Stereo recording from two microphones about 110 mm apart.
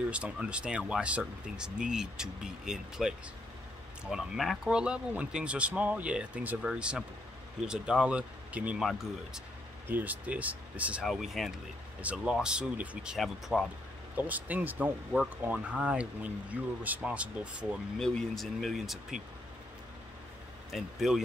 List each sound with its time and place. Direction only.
0.1 s speech: 10° right (ahead or behind)
9.8 s speech: 15° right (ahead or behind)
11.1 s speech: centre (ahead or behind)
14.1 s speech: 15° right (ahead or behind)
17.9 s speech: 5° left (ahead or behind)
20.7 s speech: 5° right (ahead or behind)